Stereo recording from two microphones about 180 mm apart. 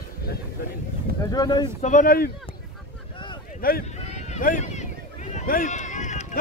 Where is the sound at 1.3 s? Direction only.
25° left (ahead or behind).